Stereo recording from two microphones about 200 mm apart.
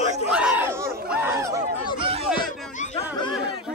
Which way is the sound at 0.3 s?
5° right (ahead or behind).